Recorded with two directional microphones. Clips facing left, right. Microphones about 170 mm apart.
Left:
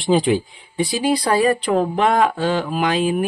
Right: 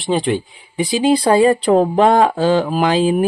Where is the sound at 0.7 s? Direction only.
20° right (ahead or behind).